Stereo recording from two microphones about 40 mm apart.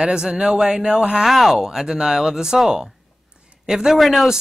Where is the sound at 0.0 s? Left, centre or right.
Right.